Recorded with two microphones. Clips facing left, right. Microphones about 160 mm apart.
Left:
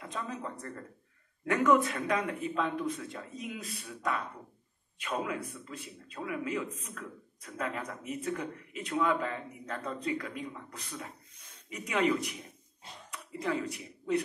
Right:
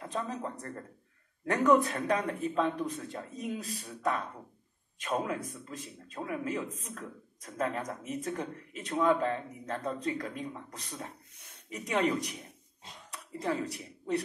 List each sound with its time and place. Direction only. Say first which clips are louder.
0.0 s a man's voice: right 3 dB; 40° right (ahead or behind)
11.3 s a sound: right 1 dB; 65° right (ahead or behind)
11.7 s a man's voice: even; 40° right (ahead or behind)